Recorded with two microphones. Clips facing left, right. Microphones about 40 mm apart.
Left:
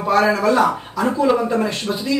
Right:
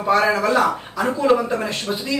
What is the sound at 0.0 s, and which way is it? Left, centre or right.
Speech, centre.